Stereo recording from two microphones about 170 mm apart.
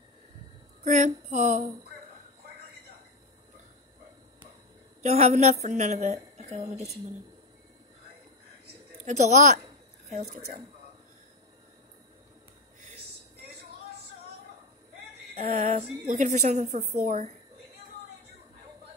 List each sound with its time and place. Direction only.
0.8 s a woman's voice: 45° right (ahead or behind)
5.0 s speech: 40° right (ahead or behind)
9.0 s a woman's voice: 45° right (ahead or behind)
15.3 s a woman's voice: 40° right (ahead or behind)